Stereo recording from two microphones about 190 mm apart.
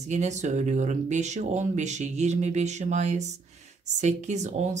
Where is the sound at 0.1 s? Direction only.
40° right (ahead or behind).